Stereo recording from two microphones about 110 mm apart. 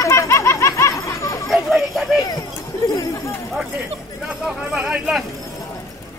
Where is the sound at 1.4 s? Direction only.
Centre (ahead or behind).